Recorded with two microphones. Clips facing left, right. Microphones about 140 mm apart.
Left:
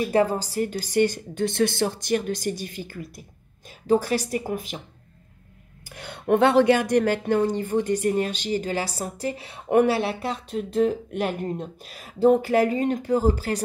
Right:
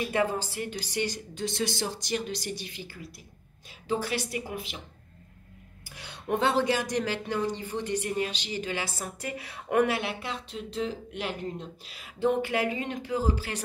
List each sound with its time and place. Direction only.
0.0 s speech: 35° left (ahead or behind)
5.9 s speech: 55° left (ahead or behind)